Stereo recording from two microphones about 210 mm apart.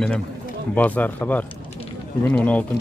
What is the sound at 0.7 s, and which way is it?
Speech, 5° left (ahead or behind).